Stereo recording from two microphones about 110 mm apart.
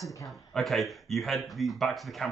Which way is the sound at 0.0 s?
30° left (ahead or behind).